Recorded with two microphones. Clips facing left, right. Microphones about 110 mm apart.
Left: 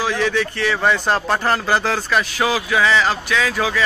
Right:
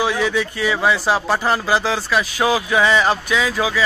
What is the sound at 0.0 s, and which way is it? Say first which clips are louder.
Speech: right 1 dB; 10° right (ahead or behind).